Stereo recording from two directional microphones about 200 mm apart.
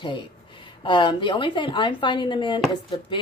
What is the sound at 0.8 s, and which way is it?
Speech, 25° left (ahead or behind).